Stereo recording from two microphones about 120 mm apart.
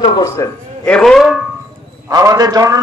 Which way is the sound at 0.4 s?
30° left (ahead or behind).